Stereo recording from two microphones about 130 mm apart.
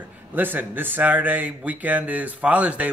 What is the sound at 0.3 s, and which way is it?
Speech, 15° right (ahead or behind).